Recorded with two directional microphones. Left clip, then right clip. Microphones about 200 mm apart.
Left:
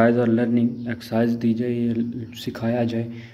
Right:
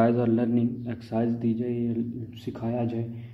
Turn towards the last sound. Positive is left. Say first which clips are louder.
# left 6 dB
turn(degrees=25)  # may be behind; listen again after turning